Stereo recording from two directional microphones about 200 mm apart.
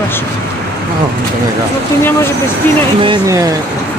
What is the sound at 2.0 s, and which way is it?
Speech, 10° left (ahead or behind).